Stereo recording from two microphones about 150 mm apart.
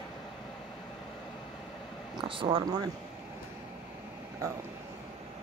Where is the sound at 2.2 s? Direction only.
35° right (ahead or behind).